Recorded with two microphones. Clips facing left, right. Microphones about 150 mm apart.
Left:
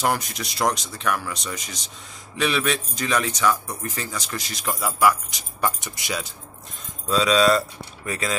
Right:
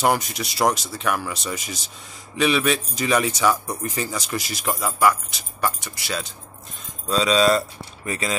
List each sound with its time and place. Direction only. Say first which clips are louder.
0.0 s speech: right 3 dB; centre (ahead or behind)
4.8 s speech: even; 15° left (ahead or behind)
7.1 s speech: even; centre (ahead or behind)